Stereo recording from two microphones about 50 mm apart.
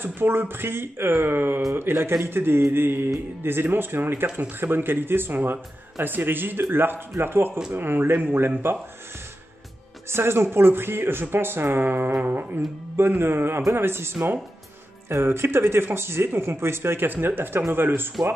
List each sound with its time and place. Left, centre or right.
0.0 s speech: right
10.1 s speech: right